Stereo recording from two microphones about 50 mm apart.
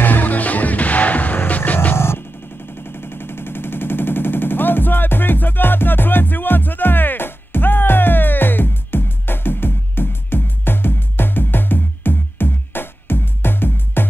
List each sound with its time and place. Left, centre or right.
0.0 s music: left
2.0 s music: left
2.9 s machine gun: left